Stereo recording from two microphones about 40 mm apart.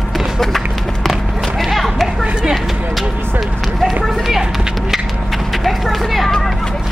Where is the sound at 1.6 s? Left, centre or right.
Centre.